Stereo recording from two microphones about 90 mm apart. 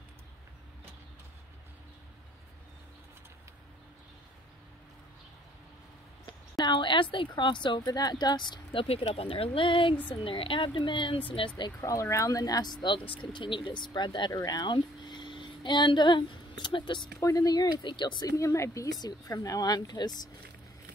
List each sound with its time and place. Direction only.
6.2 s a woman's voice: 55° left (ahead or behind)
11.8 s a woman's voice: 35° left (ahead or behind); by 14.3 s 55° left (ahead or behind)
14.3 s speech: 45° left (ahead or behind); by 17.1 s 60° left (ahead or behind)
17.2 s speech: 40° left (ahead or behind)
18.4 s speech: 35° left (ahead or behind); by 20.2 s 50° left (ahead or behind)